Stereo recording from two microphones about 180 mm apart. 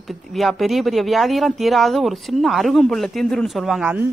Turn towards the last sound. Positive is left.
turn(degrees=-10)  # may be behind; listen again after turning